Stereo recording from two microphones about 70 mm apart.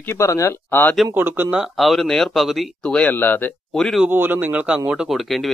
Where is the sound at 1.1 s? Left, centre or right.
Right.